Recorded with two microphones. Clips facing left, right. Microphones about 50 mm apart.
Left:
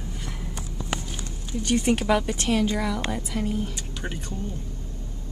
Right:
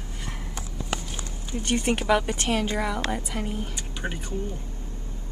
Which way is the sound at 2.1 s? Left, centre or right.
Right.